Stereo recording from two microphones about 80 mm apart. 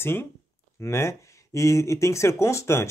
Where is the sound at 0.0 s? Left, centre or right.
Left.